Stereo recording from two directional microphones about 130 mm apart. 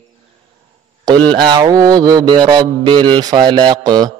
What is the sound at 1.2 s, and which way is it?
Mantra, 35° right (ahead or behind).